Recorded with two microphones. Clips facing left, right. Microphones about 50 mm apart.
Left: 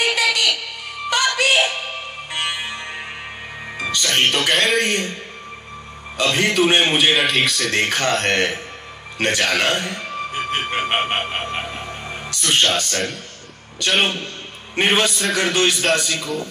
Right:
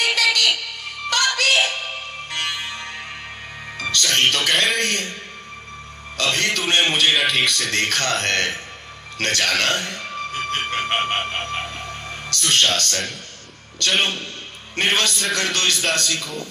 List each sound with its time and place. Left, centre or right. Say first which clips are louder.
0.0 s music: even; centre
3.7 s speech: left 1 dB; centre
4.6 s speech: left 2 dB; centre
4.8 s a man's voice: left 3 dB; centre
6.1 s a man's voice: left 4 dB; centre
7.2 s speech: left 1 dB; centre
7.8 s a man's voice: left 3 dB; centre